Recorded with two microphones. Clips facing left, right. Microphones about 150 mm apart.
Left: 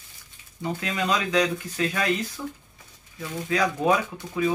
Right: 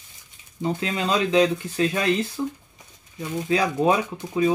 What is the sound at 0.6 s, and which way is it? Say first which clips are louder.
Speech: right 3 dB; 25° right (ahead or behind).